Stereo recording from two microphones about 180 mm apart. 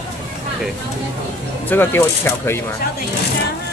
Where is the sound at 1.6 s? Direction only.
10° left (ahead or behind).